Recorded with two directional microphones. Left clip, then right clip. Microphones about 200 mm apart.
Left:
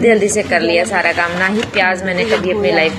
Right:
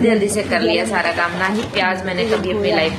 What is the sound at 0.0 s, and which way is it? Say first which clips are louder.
A woman's voice: left 5 dB; 15° left (ahead or behind).